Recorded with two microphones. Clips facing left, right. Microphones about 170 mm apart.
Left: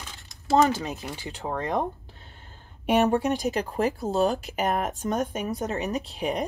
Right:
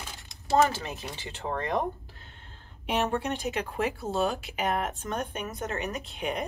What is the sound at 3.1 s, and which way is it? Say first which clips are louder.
Speech: left 6 dB; 40° left (ahead or behind).